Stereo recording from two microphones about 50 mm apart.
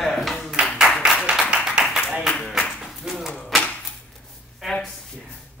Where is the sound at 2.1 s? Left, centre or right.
Centre.